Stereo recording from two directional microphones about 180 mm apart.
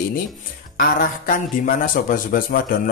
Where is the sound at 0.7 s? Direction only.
50° left (ahead or behind).